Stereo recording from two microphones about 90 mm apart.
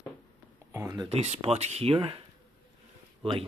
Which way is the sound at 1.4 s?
90° right.